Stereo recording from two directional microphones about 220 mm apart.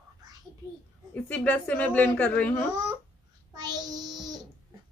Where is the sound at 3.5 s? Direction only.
20° right (ahead or behind).